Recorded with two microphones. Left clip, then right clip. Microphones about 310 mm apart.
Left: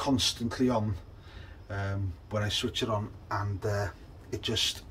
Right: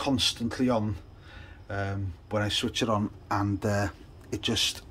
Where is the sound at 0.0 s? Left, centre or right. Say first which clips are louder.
Right 2 dB; centre.